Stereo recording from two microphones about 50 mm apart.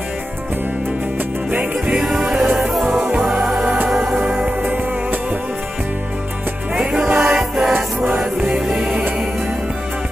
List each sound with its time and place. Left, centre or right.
1.5 s music: right
2.0 s music: centre
3.6 s music: right
4.1 s music: centre
6.7 s music: centre
7.7 s music: right
8.5 s music: centre
8.8 s music: right